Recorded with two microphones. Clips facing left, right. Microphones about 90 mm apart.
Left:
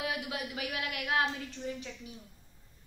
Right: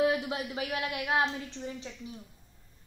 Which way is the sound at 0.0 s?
30° right (ahead or behind).